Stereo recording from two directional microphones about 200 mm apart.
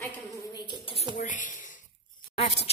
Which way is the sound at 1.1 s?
40° left (ahead or behind).